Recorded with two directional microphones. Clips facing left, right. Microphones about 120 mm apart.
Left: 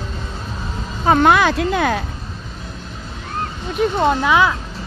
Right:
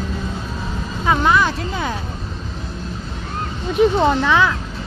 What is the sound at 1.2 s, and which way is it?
Speech, 85° left.